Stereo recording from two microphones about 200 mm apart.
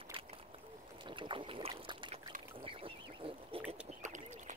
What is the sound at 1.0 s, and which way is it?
Speech, 25° right (ahead or behind).